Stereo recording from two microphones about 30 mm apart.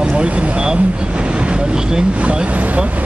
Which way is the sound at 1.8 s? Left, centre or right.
Right.